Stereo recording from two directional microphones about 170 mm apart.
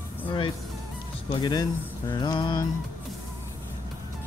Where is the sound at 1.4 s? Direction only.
25° left (ahead or behind).